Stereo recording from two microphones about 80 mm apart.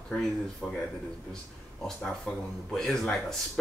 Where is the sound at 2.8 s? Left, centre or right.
Centre.